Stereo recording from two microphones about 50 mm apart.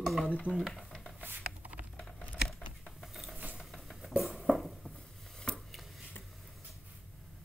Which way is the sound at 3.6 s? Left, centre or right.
Centre.